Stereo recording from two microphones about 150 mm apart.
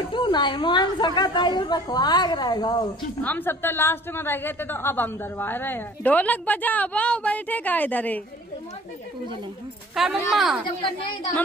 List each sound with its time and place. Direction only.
0.1 s a woman's voice: 30° left (ahead or behind)
3.2 s a woman's voice: 10° left (ahead or behind)
9.9 s speech: centre (ahead or behind)